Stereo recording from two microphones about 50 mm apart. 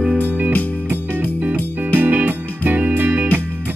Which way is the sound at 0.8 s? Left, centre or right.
Right.